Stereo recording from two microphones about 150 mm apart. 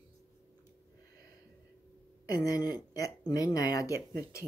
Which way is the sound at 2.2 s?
25° left (ahead or behind).